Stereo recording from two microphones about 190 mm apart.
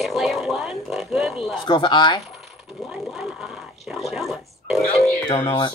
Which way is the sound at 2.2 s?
Centre (ahead or behind).